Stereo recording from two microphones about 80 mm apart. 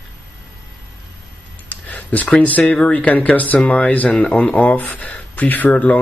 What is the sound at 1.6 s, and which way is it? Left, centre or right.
Speech, left.